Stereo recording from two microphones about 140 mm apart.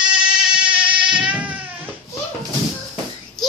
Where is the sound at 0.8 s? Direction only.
35° right (ahead or behind).